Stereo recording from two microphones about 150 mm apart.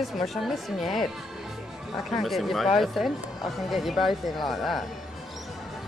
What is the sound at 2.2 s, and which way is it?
A woman's voice, centre (ahead or behind).